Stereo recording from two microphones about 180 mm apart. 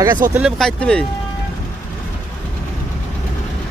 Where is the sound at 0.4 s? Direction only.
Centre (ahead or behind).